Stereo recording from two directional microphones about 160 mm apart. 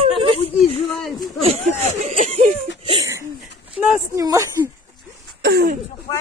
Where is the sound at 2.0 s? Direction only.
45° right (ahead or behind).